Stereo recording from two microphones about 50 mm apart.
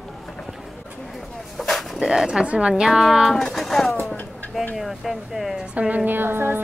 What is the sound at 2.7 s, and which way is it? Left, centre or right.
Speech, centre.